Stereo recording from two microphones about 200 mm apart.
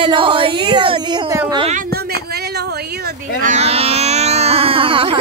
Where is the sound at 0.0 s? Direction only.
25° right (ahead or behind).